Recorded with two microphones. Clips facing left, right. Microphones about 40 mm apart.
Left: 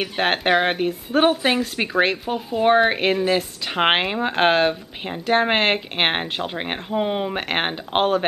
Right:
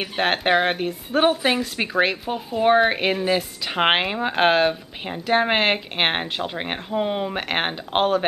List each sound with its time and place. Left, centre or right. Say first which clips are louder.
0.0 s speech: left 1 dB; centre